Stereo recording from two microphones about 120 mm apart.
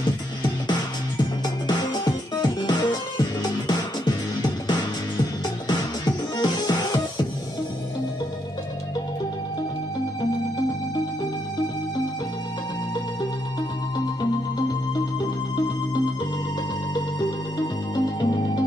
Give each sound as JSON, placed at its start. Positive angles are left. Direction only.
{"t": 0.4, "sound": "music", "side_deg": 35}
{"t": 17.2, "sound": "music", "side_deg": 40}